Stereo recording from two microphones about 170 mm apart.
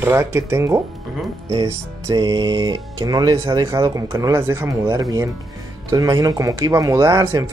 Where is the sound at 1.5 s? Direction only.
35° right (ahead or behind).